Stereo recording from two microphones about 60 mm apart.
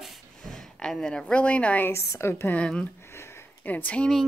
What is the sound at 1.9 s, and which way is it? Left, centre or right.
Speech, left.